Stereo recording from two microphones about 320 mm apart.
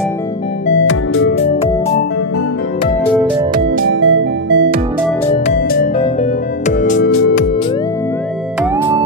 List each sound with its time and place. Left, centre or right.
0.8 s music: left
3.8 s music: right
5.7 s music: left
7.0 s music: left
8.7 s music: centre